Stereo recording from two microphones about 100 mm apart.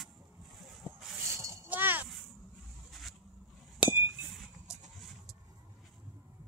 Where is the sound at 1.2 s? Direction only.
30° right (ahead or behind).